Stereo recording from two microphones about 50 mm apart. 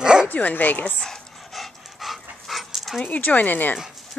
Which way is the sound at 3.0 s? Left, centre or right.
Left.